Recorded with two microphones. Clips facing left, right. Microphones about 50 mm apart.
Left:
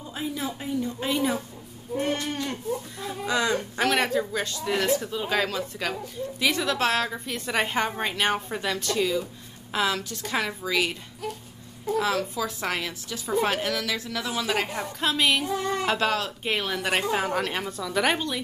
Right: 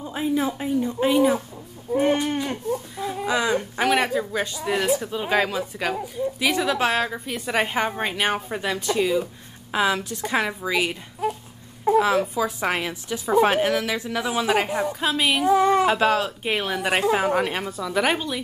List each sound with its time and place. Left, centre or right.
0.0 s a woman's voice: right
1.1 s a woman's voice: centre
12.0 s a woman's voice: right; by 18.4 s centre